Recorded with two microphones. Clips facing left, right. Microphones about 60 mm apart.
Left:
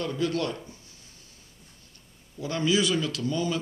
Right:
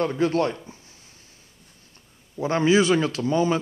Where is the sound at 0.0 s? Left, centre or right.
Right.